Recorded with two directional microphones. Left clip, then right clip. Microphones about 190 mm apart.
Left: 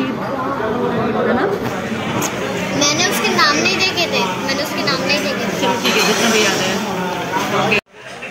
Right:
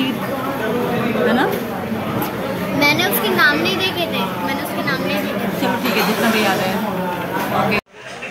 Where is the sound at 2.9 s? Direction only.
30° right (ahead or behind).